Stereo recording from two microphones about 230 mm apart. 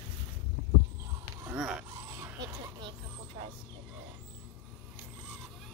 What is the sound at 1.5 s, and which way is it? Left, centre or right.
Dog, centre.